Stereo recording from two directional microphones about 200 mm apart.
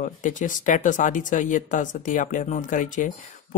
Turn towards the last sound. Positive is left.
turn(degrees=40)  # may be behind; listen again after turning